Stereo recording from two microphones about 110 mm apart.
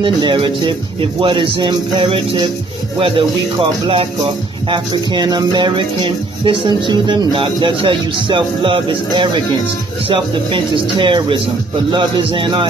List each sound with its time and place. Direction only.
0.0 s music: 50° right (ahead or behind)